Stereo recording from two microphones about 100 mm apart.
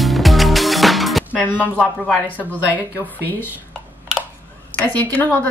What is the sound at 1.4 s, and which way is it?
Speech, 15° left (ahead or behind).